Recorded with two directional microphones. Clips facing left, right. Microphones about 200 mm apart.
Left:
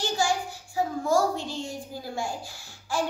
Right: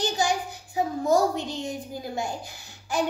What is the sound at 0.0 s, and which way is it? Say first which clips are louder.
Child singing: right 1 dB; 20° right (ahead or behind).